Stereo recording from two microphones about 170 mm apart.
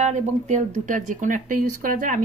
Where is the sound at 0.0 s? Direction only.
45° right (ahead or behind).